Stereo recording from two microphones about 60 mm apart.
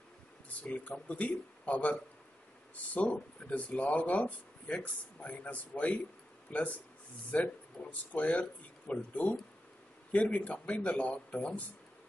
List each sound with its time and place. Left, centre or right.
0.6 s speech: left